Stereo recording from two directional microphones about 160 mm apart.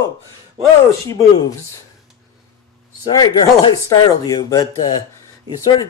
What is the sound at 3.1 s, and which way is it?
Speech, 25° left (ahead or behind).